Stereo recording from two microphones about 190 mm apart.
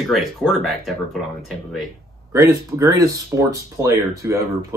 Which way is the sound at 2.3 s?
15° right (ahead or behind).